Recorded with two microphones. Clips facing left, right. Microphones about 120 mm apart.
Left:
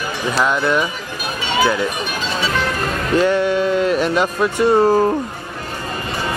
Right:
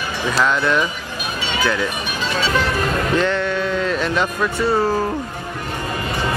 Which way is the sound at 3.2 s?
10° left (ahead or behind).